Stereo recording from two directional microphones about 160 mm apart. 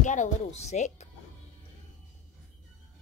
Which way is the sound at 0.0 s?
50° left (ahead or behind).